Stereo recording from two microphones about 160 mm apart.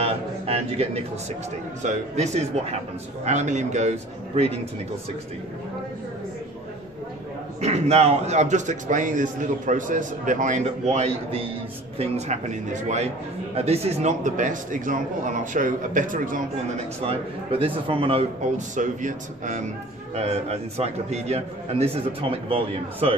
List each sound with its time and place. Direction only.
0.0 s a man's voice: 40° right (ahead or behind)
7.6 s a man's voice: 40° right (ahead or behind)
17.0 s a man's voice: 35° right (ahead or behind)
18.8 s a man's voice: 50° right (ahead or behind); by 23.1 s 35° right (ahead or behind)